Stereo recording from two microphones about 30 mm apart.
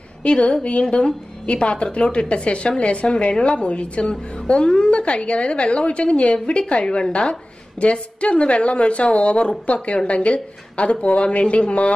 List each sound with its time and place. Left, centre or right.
0.2 s a woman's voice: left